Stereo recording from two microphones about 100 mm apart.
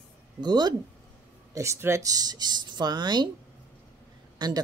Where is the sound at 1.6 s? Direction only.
25° right (ahead or behind); by 3.2 s 45° right (ahead or behind).